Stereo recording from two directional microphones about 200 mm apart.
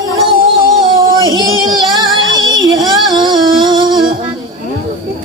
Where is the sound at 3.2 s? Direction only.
25° right (ahead or behind).